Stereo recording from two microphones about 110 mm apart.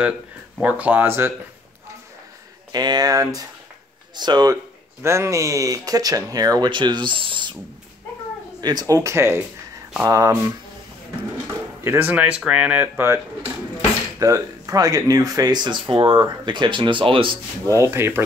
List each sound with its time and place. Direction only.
0.6 s speech: 15° right (ahead or behind)
2.7 s speech: 40° right (ahead or behind)
5.0 s speech: 25° right (ahead or behind); by 7.5 s 50° right (ahead or behind)
8.5 s speech: 40° right (ahead or behind)
11.8 s speech: 20° right (ahead or behind)
14.2 s speech: 30° right (ahead or behind); by 17.4 s 50° right (ahead or behind)
17.6 s speech: 25° right (ahead or behind)